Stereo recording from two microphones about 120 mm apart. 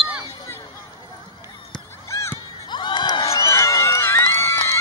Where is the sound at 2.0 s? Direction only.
25° left (ahead or behind).